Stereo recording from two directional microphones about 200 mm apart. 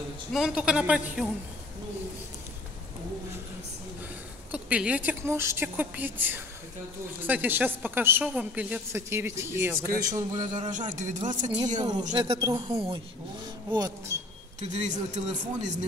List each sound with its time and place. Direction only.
0.3 s a woman's voice: centre (ahead or behind)
4.5 s a woman's voice: 5° right (ahead or behind)
10.7 s speech: 40° right (ahead or behind)
12.1 s speech: 25° right (ahead or behind)
14.6 s speech: 35° right (ahead or behind)